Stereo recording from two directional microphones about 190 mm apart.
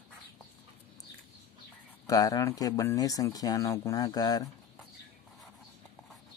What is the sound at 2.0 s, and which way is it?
Speech, 20° left (ahead or behind).